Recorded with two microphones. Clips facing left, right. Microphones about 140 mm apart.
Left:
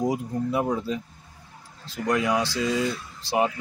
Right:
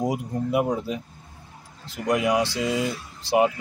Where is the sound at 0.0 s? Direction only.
20° right (ahead or behind).